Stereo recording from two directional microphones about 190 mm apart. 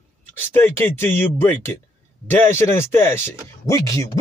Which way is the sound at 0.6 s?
10° left (ahead or behind).